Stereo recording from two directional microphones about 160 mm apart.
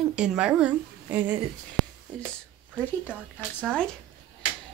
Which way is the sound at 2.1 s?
5° left (ahead or behind).